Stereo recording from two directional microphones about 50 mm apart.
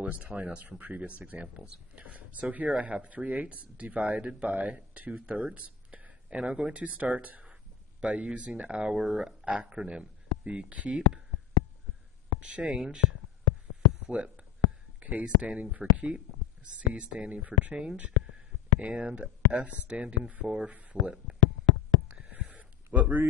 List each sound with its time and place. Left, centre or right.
0.0 s speech: right
12.4 s speech: right
14.0 s speech: right
22.1 s a sound: right
22.9 s speech: right